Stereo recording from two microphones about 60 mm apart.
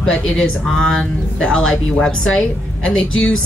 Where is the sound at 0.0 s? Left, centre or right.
Centre.